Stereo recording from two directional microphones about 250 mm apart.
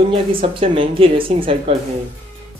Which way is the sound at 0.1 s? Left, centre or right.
Right.